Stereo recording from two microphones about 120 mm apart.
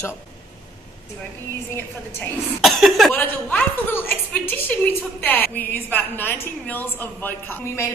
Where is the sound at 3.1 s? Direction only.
15° left (ahead or behind).